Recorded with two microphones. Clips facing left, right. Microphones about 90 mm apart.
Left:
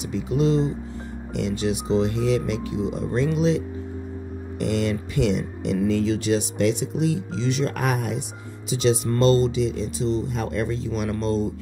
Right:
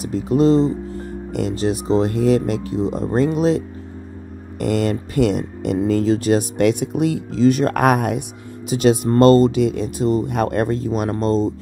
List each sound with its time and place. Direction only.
0.1 s speech: 45° right (ahead or behind)